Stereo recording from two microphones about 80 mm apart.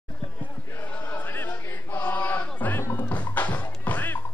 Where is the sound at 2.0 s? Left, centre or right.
Left.